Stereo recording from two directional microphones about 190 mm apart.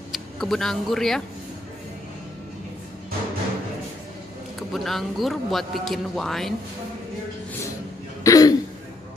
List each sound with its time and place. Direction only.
0.1 s speech: centre (ahead or behind)
4.6 s a man's voice: centre (ahead or behind)
8.2 s throat clearing: 15° left (ahead or behind)